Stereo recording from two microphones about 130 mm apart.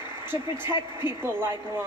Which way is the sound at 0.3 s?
15° right (ahead or behind).